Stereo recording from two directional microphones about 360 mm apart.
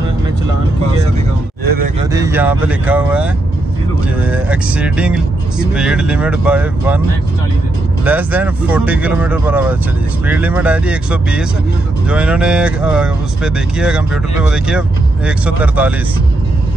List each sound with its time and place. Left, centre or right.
1.6 s a sound: right
2.1 s speech: centre
8.0 s speech: centre